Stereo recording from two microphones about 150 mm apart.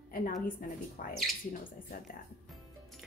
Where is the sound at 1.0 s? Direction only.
60° left (ahead or behind).